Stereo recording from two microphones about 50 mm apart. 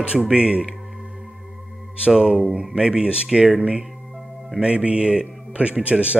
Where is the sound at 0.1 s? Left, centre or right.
Centre.